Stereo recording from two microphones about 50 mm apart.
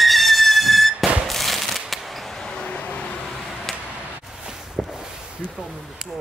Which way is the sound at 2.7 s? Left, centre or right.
Left.